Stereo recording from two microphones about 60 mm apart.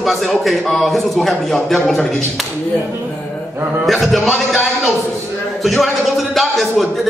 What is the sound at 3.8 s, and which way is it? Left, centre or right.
Speech, centre.